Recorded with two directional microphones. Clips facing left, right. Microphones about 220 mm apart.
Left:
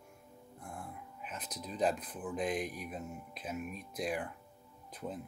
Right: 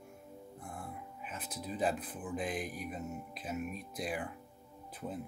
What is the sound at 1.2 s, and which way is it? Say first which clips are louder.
Speech: right 1 dB; 5° right (ahead or behind).